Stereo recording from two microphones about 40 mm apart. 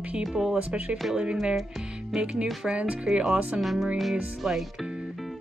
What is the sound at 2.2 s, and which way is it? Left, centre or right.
Speech, right.